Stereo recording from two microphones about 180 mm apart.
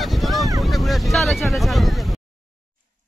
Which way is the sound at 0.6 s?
Centre (ahead or behind).